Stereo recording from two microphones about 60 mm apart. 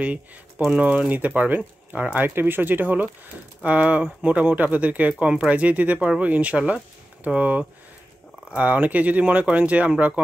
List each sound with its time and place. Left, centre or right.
0.7 s speech: right